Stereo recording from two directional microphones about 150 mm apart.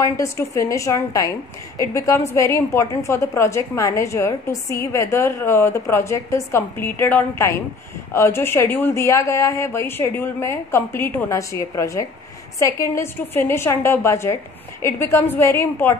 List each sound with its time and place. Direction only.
0.0 s a woman's voice: 20° left (ahead or behind)